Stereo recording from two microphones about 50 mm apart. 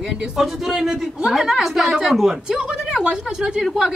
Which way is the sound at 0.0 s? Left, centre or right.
Centre.